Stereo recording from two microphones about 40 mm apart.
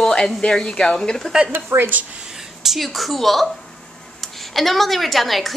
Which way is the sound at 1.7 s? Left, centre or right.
Right.